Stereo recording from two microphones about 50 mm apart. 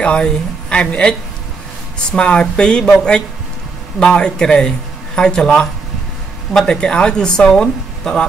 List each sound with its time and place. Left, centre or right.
0.0 s a woman's voice: left